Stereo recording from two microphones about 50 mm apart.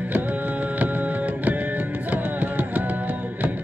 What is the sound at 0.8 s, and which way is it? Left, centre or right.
Music, right.